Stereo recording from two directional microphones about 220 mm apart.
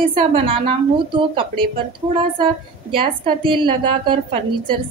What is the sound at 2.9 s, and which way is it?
A woman's voice, 20° right (ahead or behind).